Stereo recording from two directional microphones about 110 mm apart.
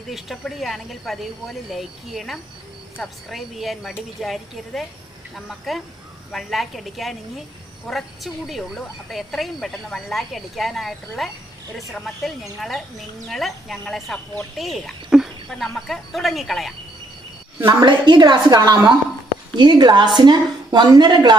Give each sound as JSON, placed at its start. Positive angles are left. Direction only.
{"t": 0.1, "sound": "a woman's voice", "side_deg": 0}
{"t": 17.6, "sound": "a woman's voice", "side_deg": -45}